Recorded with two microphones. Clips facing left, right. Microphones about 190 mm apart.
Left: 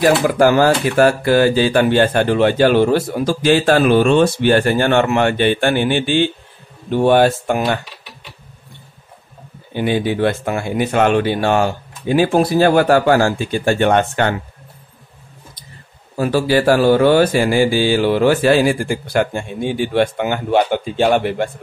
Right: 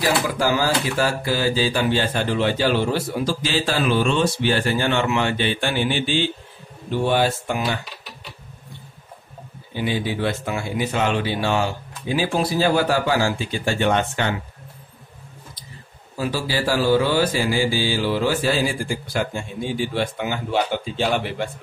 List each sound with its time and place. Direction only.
0.0 s speech: 60° left (ahead or behind)
9.8 s speech: 60° left (ahead or behind)
16.2 s speech: 55° left (ahead or behind)